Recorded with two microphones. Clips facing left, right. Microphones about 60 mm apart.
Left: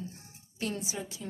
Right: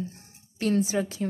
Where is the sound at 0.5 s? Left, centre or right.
Right.